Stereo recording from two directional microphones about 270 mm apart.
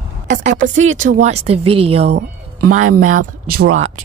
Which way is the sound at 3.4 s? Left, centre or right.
Right.